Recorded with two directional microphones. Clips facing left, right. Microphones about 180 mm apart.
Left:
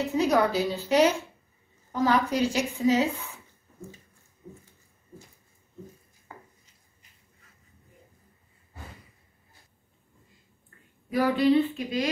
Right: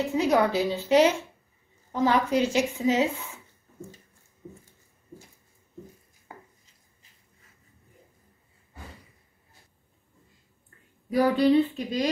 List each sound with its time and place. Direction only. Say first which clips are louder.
0.1 s a woman's voice: even; 25° right (ahead or behind)
11.1 s speech: right 1 dB; 40° right (ahead or behind)